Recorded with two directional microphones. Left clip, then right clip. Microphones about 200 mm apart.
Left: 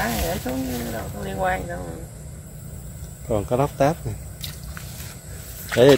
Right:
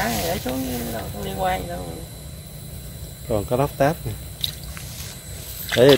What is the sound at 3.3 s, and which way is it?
Speech, 5° left (ahead or behind).